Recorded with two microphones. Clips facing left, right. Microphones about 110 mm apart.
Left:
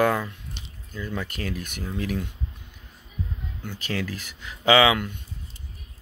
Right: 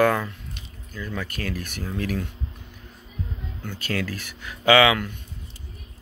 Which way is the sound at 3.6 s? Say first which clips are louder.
Right 2 dB; 15° left (ahead or behind).